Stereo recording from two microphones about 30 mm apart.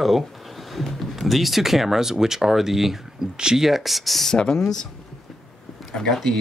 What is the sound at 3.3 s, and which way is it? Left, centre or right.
Speech, right.